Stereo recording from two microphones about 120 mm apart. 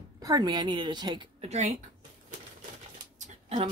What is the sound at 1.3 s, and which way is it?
Speech, 65° right (ahead or behind).